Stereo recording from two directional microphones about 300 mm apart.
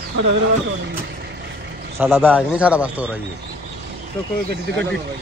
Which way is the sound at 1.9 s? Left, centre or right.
Centre.